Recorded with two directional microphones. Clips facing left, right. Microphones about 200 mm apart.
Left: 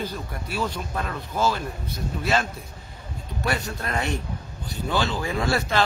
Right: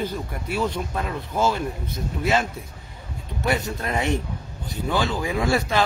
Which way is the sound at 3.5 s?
20° right (ahead or behind).